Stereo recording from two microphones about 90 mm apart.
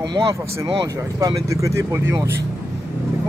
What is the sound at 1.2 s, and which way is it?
Speech, 40° right (ahead or behind).